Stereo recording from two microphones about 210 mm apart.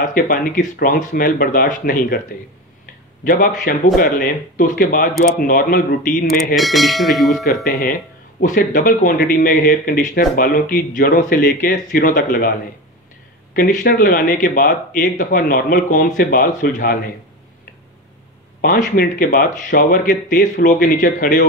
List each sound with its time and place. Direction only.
0.0 s speech: 40° left (ahead or behind)
3.3 s speech: 40° left (ahead or behind)
6.2 s bell: centre (ahead or behind)
8.4 s speech: 40° left (ahead or behind)
18.6 s speech: 45° left (ahead or behind)